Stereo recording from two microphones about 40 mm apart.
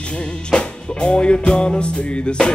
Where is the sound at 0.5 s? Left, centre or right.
Left.